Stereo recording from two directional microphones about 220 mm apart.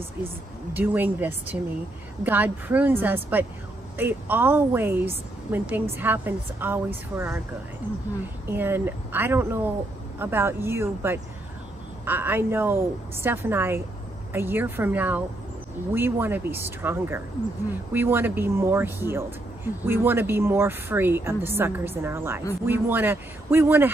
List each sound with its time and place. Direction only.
0.7 s speech: 10° right (ahead or behind)
8.5 s speech: 10° right (ahead or behind)